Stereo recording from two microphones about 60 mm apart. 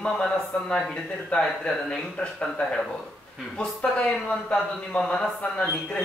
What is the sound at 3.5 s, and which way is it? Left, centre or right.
A man's voice, centre.